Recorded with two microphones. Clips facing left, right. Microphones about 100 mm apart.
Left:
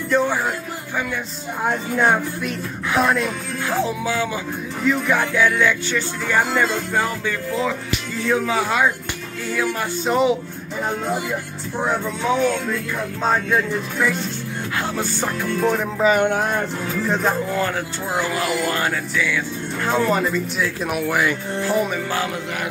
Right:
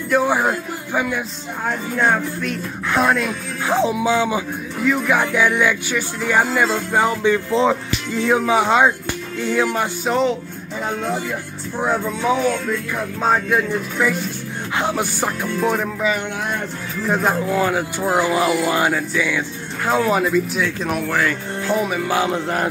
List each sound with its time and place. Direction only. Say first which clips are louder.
0.1 s a man's voice: right 3 dB; 10° right (ahead or behind)
1.6 s music: left 1 dB; 15° left (ahead or behind); by 3.3 s centre (ahead or behind)
3.6 s music: right 5 dB; 20° right (ahead or behind)
4.8 s music: right 1 dB; 5° right (ahead or behind)
5.2 s music: right 1 dB; 15° right (ahead or behind)
10.0 s music: left 1 dB; 5° left (ahead or behind)
13.2 s speech: right 2 dB; 10° right (ahead or behind)
16.2 s speech: left 6 dB; 45° left (ahead or behind)
17.1 s speech: right 4 dB; 10° right (ahead or behind); by 21.4 s 10° left (ahead or behind)
21.6 s speech: right 2 dB; 5° right (ahead or behind)
22.3 s music: right 6 dB; 40° right (ahead or behind)